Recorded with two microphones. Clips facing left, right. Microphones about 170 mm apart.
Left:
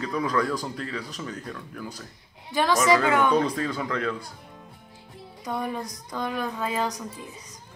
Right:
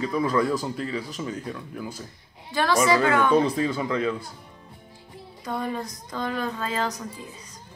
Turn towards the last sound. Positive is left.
turn(degrees=15)  # may be behind; listen again after turning